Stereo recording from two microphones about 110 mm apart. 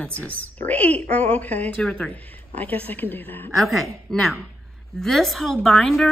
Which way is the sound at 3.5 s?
Centre (ahead or behind).